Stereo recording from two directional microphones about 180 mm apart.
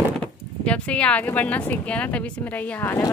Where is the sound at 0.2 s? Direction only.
5° left (ahead or behind).